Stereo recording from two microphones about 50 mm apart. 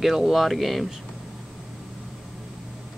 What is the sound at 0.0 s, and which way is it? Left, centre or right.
Speech, centre.